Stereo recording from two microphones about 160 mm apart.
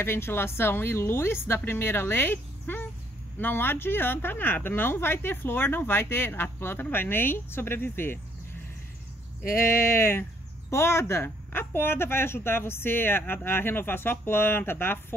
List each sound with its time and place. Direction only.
0.0 s speech: 15° left (ahead or behind)
9.4 s speech: 15° left (ahead or behind)